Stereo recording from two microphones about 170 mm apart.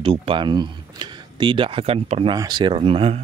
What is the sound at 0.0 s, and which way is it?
Speech, 35° right (ahead or behind).